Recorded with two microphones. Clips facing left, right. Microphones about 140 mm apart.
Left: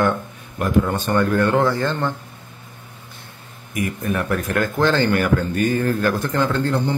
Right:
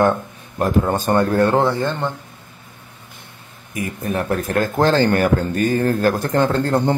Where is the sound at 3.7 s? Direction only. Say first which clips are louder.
Even; 25° right (ahead or behind).